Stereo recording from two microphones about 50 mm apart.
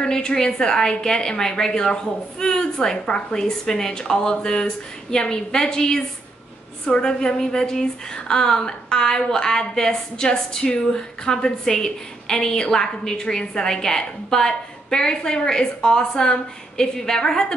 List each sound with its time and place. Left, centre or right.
0.0 s a woman's voice: centre